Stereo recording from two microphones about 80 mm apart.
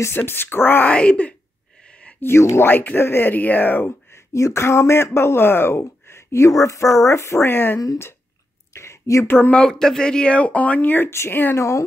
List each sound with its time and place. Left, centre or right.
0.0 s speech: left
0.9 s speech: centre
2.0 s a sound: left
2.3 s speech: left
4.3 s speech: left
8.7 s a sound: left
9.3 s speech: left
9.6 s speech: centre; by 11.6 s left